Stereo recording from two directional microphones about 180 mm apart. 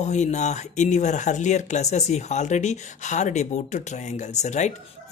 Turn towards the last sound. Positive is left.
turn(degrees=40)  # may be behind; listen again after turning